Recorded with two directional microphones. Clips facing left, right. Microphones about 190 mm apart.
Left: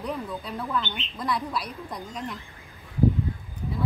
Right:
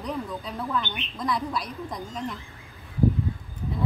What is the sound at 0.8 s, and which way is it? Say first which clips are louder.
Speech: even; 15° right (ahead or behind).